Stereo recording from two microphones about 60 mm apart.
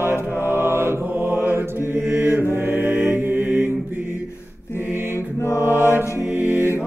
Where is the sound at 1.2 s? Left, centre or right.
Right.